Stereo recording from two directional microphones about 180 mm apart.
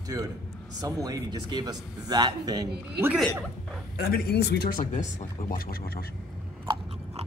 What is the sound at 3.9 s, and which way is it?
Speech, 55° left (ahead or behind).